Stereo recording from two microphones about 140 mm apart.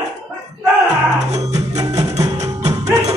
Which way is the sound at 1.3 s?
55° right (ahead or behind).